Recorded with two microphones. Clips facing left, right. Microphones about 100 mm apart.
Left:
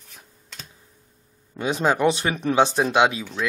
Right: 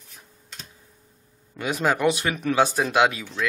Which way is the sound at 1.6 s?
25° left (ahead or behind).